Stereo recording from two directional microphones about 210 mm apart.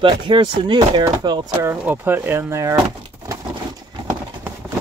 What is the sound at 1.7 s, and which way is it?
Speech, 10° right (ahead or behind).